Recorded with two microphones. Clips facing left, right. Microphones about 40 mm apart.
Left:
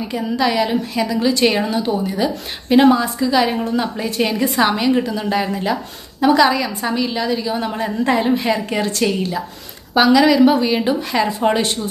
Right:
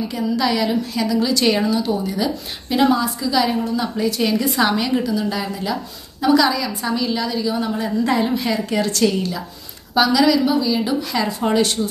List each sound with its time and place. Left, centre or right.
0.1 s a woman's voice: centre